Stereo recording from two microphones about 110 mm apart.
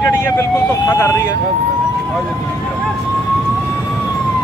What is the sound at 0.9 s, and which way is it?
Speech, 25° left (ahead or behind).